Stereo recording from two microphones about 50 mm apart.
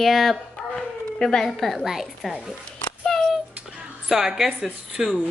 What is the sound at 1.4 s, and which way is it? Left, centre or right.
Speech, centre.